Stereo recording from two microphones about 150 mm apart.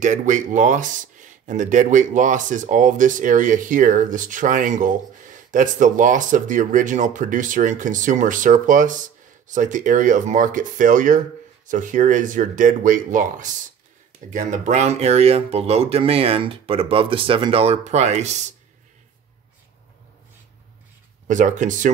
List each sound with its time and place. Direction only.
0.0 s speech: 55° right (ahead or behind)
21.3 s speech: 55° right (ahead or behind)